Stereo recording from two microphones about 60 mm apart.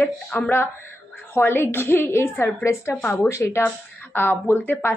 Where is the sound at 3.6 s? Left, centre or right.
Left.